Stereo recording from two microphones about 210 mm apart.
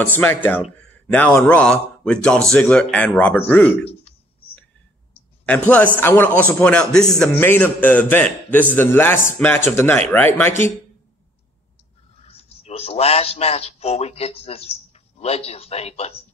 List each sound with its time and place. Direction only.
0.0 s a man's voice: 10° left (ahead or behind)
5.4 s a woman's voice: 5° left (ahead or behind)
12.2 s a man's voice: 30° left (ahead or behind)